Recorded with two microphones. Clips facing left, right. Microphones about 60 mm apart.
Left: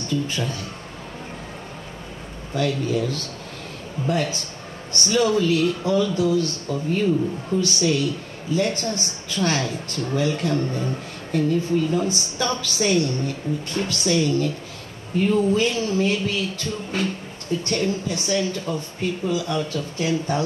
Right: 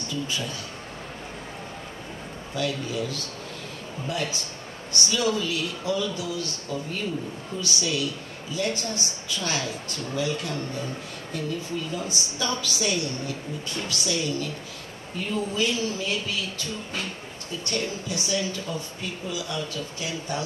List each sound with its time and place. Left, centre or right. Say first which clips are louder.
0.1 s speech: left 6 dB; left
2.5 s speech: left 6 dB; left